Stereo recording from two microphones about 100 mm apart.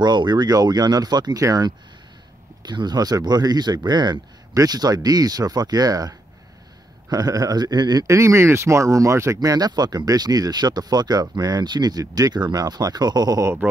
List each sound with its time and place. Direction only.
0.0 s a man's voice: 50° right (ahead or behind)